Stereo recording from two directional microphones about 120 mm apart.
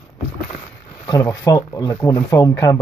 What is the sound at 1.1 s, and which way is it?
Speech, 25° left (ahead or behind).